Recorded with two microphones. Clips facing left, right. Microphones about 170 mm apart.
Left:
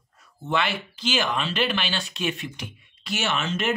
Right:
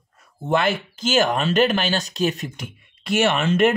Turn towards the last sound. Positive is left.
turn(degrees=-55)  # may be behind; listen again after turning